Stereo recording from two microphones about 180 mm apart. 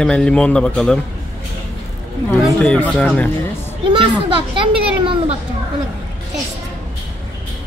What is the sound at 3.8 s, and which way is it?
A child's voice, 25° right (ahead or behind).